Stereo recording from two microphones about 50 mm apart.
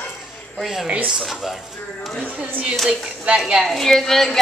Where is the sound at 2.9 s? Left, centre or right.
Centre.